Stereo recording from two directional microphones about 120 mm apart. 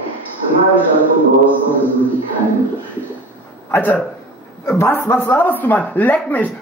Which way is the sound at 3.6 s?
15° left (ahead or behind).